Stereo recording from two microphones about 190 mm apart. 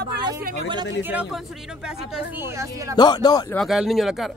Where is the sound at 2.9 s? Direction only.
20° left (ahead or behind).